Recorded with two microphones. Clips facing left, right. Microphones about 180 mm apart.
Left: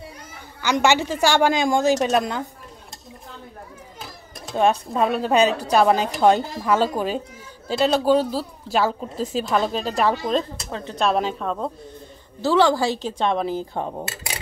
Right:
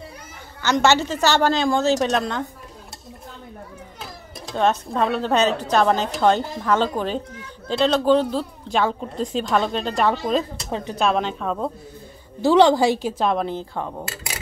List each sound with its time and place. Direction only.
0.6 s a woman's voice: 10° left (ahead or behind)
4.5 s a woman's voice: 10° left (ahead or behind)
10.7 s a woman's voice: 15° right (ahead or behind)
11.0 s a woman's voice: centre (ahead or behind)
12.4 s a woman's voice: 20° right (ahead or behind)
13.2 s a woman's voice: centre (ahead or behind)
13.7 s speech: 25° left (ahead or behind)